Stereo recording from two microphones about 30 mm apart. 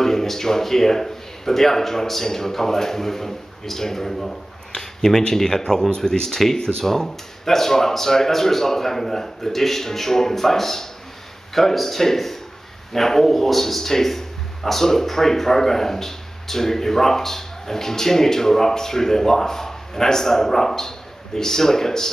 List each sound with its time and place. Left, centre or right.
0.0 s speech: centre